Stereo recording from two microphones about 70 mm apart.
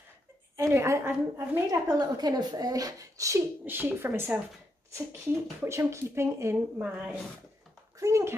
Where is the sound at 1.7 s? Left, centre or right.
Right.